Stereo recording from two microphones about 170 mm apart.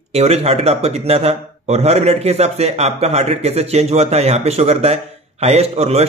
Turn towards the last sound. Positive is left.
turn(degrees=-40)  # may be behind; listen again after turning